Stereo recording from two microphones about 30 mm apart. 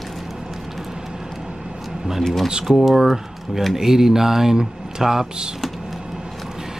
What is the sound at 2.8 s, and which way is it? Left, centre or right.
Speech, centre.